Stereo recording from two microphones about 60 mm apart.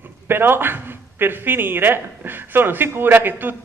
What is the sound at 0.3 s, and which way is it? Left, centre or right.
A man's voice, right.